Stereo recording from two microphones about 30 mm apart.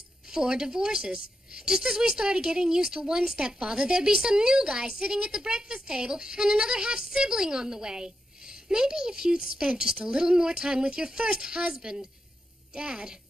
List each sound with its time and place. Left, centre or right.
0.3 s a woman's voice: right